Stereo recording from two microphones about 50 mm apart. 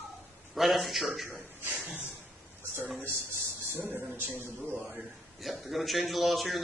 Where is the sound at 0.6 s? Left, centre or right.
Centre.